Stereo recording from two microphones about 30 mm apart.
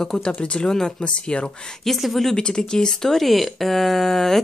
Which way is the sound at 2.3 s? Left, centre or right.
Left.